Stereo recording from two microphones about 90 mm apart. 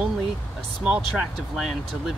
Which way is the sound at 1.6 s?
5° right (ahead or behind).